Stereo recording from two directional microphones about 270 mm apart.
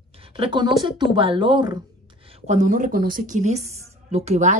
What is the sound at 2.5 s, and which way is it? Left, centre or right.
Speech, right.